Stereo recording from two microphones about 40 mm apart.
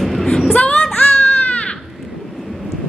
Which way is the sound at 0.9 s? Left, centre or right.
Left.